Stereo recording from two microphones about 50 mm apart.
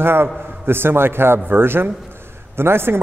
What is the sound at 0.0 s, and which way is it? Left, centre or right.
A man's voice, right.